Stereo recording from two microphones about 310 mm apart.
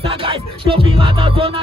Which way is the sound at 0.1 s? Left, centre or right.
Centre.